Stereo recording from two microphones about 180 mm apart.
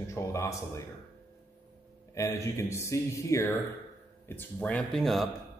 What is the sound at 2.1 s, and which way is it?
A man's voice, 15° left (ahead or behind).